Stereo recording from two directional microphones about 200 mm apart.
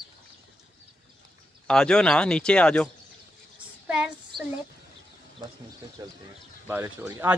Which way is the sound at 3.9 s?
5° right (ahead or behind).